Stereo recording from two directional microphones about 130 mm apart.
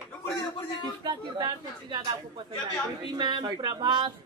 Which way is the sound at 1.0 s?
35° right (ahead or behind).